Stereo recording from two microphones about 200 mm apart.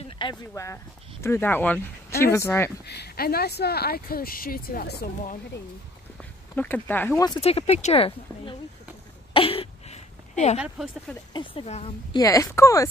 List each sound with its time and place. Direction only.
0.0 s speech: 25° left (ahead or behind)
2.9 s speech: 50° left (ahead or behind)
6.5 s speech: 10° left (ahead or behind)
7.4 s speech: 30° left (ahead or behind)
9.3 s a sound: 30° left (ahead or behind)
10.6 s speech: centre (ahead or behind)
11.3 s speech: 30° left (ahead or behind)
12.2 s speech: 15° left (ahead or behind)